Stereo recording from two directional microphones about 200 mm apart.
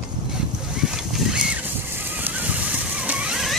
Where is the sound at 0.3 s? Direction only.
5° right (ahead or behind).